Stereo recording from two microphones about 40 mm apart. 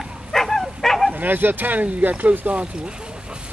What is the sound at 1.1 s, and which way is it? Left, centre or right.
Speech, right.